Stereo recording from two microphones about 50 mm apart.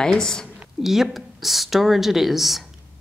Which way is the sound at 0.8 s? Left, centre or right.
Centre.